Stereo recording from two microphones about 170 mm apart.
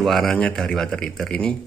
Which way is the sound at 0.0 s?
Centre (ahead or behind).